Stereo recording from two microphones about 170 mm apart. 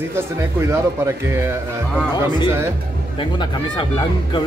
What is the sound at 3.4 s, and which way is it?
Speech, 25° left (ahead or behind).